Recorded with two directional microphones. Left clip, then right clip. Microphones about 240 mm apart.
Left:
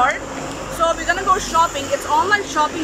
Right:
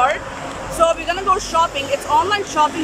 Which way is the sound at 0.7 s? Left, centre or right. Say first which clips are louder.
Right 2 dB; centre.